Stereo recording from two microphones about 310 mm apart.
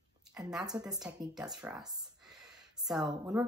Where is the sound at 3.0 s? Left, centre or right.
Centre.